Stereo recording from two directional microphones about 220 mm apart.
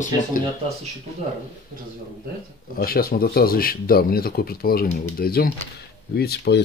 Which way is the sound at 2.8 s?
45° left (ahead or behind).